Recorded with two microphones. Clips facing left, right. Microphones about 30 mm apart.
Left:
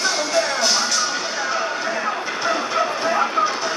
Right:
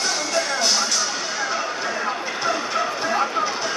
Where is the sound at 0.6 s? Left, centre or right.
Centre.